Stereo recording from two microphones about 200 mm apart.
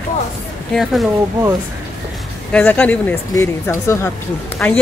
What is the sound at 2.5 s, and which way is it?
A woman's voice, 5° left (ahead or behind).